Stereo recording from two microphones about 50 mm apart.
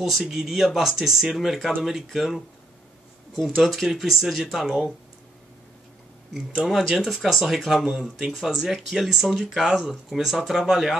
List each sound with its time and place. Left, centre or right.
0.2 s speech: centre
3.3 s speech: centre
6.8 s speech: centre